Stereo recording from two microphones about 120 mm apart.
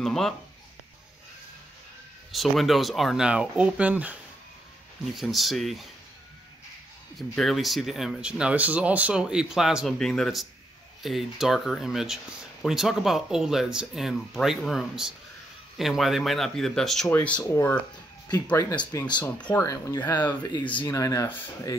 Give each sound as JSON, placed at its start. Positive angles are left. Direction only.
{"t": 0.0, "sound": "speech", "side_deg": 5}
{"t": 2.3, "sound": "speech", "side_deg": 0}
{"t": 5.1, "sound": "speech", "side_deg": 0}
{"t": 7.2, "sound": "speech", "side_deg": 0}
{"t": 17.4, "sound": "speech", "side_deg": 25}
{"t": 19.5, "sound": "speech", "side_deg": 25}
{"t": 20.0, "sound": "speech", "side_deg": 15}
{"t": 20.9, "sound": "speech", "side_deg": 25}